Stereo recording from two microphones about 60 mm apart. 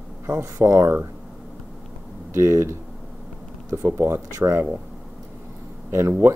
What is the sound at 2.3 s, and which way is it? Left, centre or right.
Speech, right.